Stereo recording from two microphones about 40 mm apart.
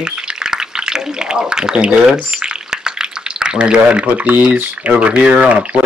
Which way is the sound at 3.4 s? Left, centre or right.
Right.